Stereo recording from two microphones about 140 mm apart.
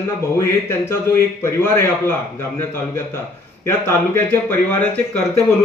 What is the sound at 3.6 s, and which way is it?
Speech, 15° left (ahead or behind).